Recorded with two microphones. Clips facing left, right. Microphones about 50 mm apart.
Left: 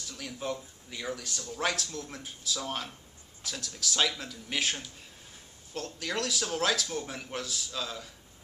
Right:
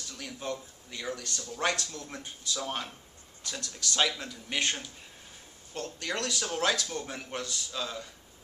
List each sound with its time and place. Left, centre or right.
0.1 s a man's voice: centre